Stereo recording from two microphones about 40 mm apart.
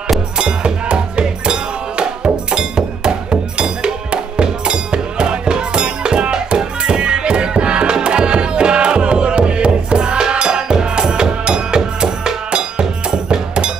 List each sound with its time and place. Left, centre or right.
0.4 s music: right